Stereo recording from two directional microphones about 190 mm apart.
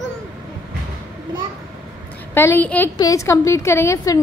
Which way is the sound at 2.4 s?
10° left (ahead or behind).